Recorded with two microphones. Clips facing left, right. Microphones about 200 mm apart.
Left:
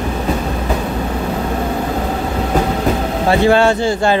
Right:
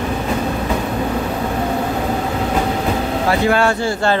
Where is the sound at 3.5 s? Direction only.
25° left (ahead or behind).